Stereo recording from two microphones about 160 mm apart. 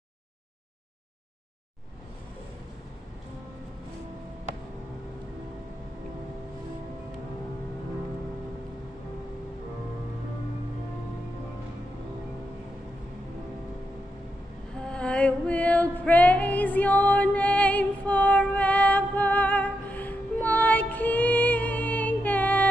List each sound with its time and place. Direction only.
14.8 s female singing: 5° left (ahead or behind)